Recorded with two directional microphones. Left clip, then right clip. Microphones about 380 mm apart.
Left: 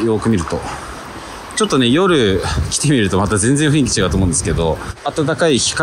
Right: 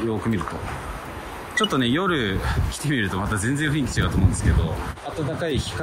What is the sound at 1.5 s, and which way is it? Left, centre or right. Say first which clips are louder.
Speech: left 7 dB; centre.